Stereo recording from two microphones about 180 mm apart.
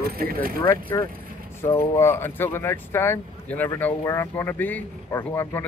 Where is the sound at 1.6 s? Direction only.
15° left (ahead or behind).